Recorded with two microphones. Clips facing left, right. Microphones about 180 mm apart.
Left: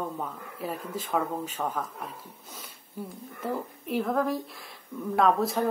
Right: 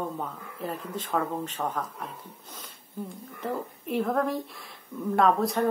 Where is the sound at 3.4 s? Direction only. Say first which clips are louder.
Even; centre (ahead or behind).